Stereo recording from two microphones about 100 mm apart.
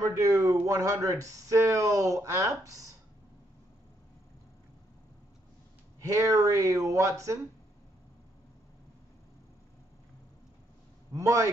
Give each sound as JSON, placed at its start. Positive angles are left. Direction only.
{"t": 0.0, "sound": "speech", "side_deg": -35}
{"t": 5.9, "sound": "speech", "side_deg": -30}
{"t": 11.1, "sound": "speech", "side_deg": -30}